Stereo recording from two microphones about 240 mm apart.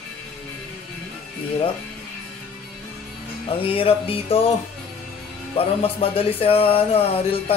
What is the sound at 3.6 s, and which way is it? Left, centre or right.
Speech, left.